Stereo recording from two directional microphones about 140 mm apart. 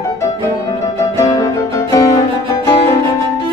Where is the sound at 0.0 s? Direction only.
25° left (ahead or behind).